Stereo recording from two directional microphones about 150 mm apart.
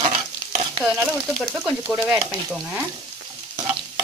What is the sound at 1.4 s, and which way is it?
Speech, 5° right (ahead or behind).